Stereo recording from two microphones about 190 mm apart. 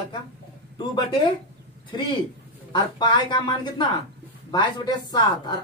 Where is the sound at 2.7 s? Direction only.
25° left (ahead or behind).